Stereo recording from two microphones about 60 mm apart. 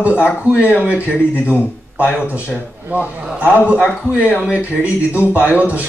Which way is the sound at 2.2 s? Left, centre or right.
Right.